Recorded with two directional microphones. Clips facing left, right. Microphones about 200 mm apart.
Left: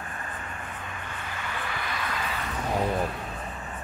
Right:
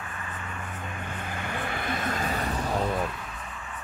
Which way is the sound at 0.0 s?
45° left (ahead or behind).